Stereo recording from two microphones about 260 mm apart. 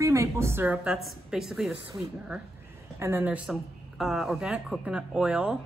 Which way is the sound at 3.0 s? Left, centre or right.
Centre.